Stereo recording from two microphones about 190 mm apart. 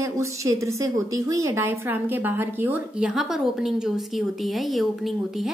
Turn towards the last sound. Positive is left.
turn(degrees=0)  # may be behind; listen again after turning